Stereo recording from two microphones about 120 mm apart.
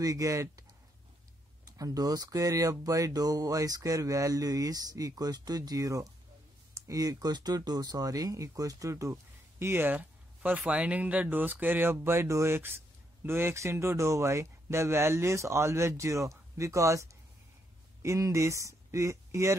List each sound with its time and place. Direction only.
0.0 s speech: 25° right (ahead or behind)
1.8 s speech: 30° right (ahead or behind)